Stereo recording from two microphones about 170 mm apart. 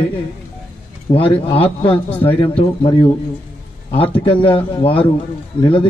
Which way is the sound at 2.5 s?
30° left (ahead or behind).